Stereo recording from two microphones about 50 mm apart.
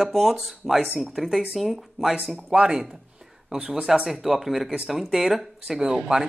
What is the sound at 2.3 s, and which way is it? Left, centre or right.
Speech, centre.